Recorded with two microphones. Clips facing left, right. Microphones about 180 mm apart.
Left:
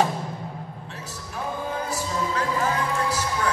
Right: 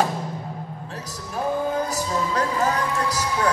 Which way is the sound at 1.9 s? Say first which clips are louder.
Right 2 dB; 40° right (ahead or behind).